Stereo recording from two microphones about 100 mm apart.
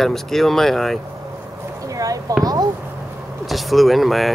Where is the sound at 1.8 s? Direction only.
35° right (ahead or behind).